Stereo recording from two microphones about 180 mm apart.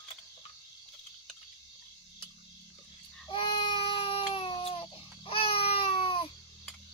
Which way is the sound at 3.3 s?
30° left (ahead or behind).